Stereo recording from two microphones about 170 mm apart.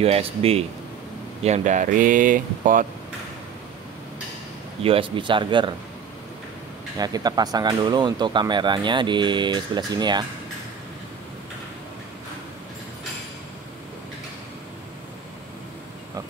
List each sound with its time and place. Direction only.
0.0 s speech: 35° right (ahead or behind); by 2.9 s 50° right (ahead or behind)
4.8 s speech: 30° right (ahead or behind)
7.0 s speech: 25° right (ahead or behind)